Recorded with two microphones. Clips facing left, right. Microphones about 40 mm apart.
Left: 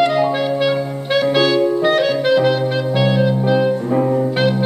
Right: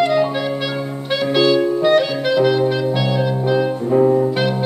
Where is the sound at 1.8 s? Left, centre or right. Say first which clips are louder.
Even; left.